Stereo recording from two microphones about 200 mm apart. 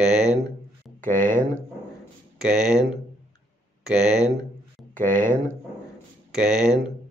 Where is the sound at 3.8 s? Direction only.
5° right (ahead or behind).